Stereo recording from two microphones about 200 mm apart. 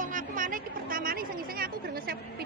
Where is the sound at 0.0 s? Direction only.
40° right (ahead or behind).